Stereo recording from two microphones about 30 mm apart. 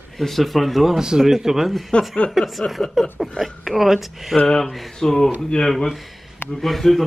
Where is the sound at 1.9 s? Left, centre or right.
Left.